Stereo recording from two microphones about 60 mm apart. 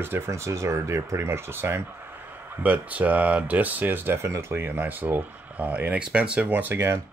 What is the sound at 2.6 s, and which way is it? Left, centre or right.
Speech, right.